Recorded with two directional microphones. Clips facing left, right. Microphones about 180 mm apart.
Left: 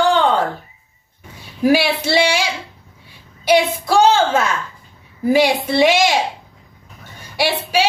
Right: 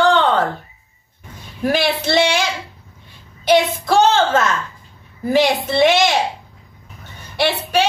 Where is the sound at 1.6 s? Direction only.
10° left (ahead or behind).